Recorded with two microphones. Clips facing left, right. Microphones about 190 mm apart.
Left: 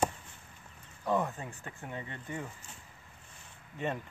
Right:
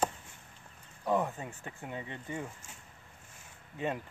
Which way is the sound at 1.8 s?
15° right (ahead or behind).